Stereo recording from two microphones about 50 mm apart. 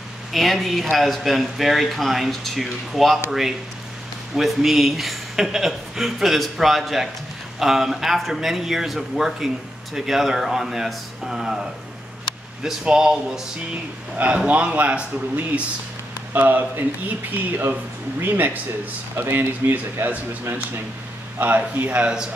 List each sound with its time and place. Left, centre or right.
0.3 s a man's voice: centre
12.8 s a man's voice: centre
14.1 s a man's voice: right
16.3 s a man's voice: right
19.1 s speech: right
21.4 s a man's voice: right